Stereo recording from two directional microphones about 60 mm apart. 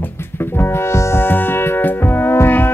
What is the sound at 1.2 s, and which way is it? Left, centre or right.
Music, left.